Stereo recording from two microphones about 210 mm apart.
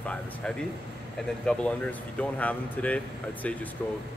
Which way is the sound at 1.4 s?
5° left (ahead or behind).